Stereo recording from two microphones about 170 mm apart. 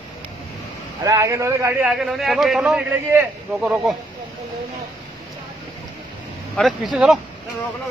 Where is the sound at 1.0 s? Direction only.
20° right (ahead or behind).